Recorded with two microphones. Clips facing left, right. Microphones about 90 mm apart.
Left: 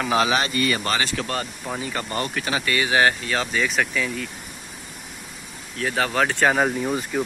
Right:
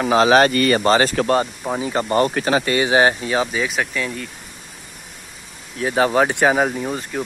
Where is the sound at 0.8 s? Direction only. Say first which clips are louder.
Right 9 dB; 40° right (ahead or behind).